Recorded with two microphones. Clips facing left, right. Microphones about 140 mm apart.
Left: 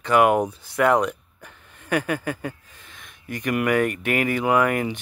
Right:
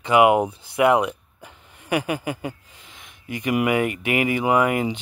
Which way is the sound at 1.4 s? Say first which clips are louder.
Right 1 dB; 15° right (ahead or behind).